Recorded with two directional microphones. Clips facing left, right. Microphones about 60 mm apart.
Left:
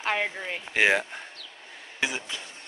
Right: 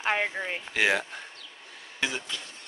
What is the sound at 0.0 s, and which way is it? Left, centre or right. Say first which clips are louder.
Speech: right 1 dB; centre.